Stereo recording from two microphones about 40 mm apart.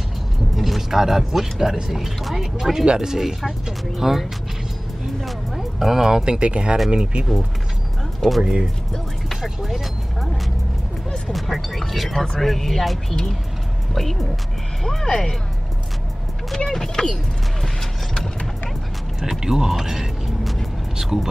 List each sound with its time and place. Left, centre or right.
0.6 s speech: centre
2.8 s speech: right
3.1 s speech: centre
5.2 s music: centre
6.2 s speech: right
8.2 s speech: centre
10.2 s vehicle: centre
11.3 s speech: centre
14.8 s speech: centre
16.4 s a sound: centre
19.4 s music: centre
21.0 s speech: centre